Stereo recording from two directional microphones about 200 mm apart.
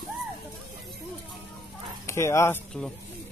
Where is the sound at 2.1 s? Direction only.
15° left (ahead or behind).